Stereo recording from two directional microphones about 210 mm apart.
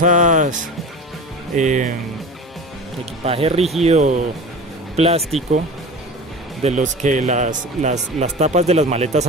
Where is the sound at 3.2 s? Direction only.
30° right (ahead or behind).